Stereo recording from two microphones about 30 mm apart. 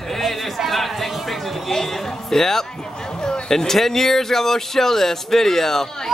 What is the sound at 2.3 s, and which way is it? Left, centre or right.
A man's voice, centre.